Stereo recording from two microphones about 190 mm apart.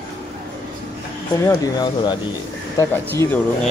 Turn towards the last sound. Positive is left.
turn(degrees=10)  # may be behind; listen again after turning